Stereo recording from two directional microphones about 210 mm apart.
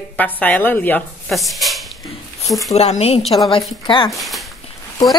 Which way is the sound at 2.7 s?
30° left (ahead or behind).